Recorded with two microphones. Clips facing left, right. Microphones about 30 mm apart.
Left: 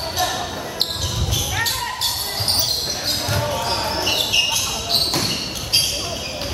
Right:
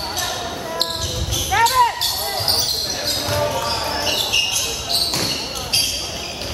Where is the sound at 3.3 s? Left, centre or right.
Centre.